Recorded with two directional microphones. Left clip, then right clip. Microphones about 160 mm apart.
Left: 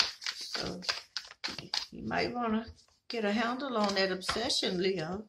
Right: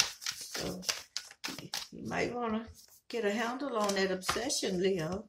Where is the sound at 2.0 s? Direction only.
25° left (ahead or behind).